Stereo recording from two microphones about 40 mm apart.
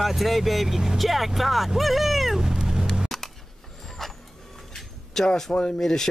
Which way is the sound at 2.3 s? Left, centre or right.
Centre.